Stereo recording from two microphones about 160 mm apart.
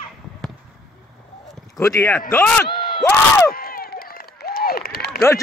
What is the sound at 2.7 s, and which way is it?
Crowd, 30° left (ahead or behind).